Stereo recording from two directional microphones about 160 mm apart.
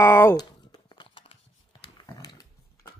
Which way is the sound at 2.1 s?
25° left (ahead or behind).